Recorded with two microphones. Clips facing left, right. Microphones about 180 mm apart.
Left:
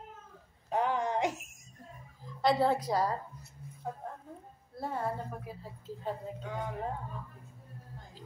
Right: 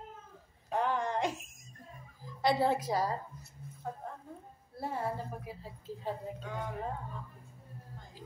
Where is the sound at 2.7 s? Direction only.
5° right (ahead or behind).